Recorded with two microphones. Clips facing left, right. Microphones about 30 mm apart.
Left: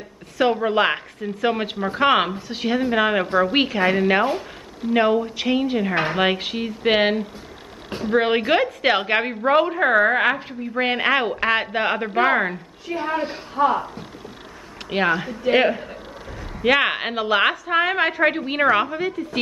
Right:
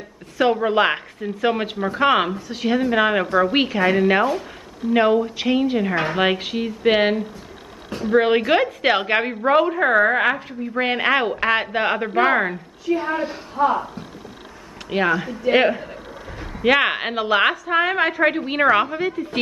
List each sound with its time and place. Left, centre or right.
0.4 s a woman's voice: centre
1.9 s speech: centre
2.3 s speech: left
2.6 s a woman's voice: centre
8.6 s a woman's voice: centre
13.2 s speech: centre
14.9 s speech: centre
15.5 s a woman's voice: centre